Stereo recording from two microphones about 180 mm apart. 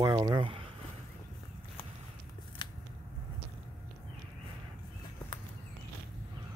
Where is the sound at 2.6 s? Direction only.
25° left (ahead or behind).